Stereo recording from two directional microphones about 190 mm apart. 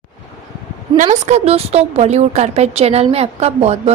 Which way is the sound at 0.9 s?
40° right (ahead or behind).